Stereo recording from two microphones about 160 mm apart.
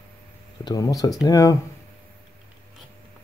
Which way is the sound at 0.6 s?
20° left (ahead or behind).